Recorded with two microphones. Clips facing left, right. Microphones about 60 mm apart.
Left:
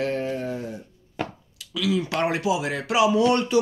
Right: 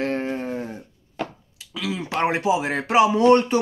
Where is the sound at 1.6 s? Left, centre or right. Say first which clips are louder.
Left 4 dB; right.